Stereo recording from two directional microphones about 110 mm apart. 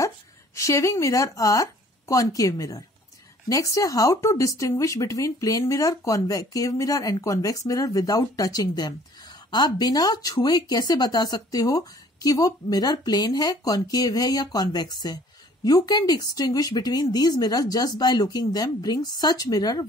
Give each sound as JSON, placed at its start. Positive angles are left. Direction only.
{"t": 0.6, "sound": "speech", "side_deg": 30}